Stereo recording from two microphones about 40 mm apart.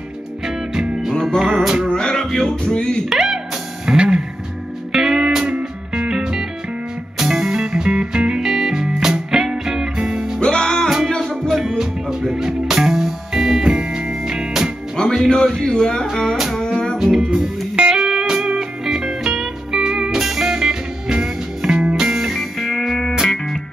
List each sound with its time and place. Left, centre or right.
1.1 s music: centre
1.5 s music: centre
1.9 s music: centre
3.1 s music: centre
5.4 s music: right
10.4 s music: left
11.8 s music: centre
15.2 s music: centre
17.0 s music: centre
21.9 s music: centre
22.3 s music: centre